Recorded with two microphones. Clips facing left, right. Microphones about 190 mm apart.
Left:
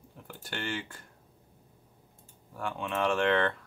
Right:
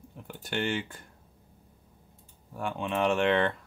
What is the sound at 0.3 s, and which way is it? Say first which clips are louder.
Speech: right 6 dB; 20° right (ahead or behind).